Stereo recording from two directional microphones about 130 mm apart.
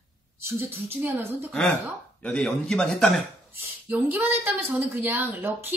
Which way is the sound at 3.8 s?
15° right (ahead or behind).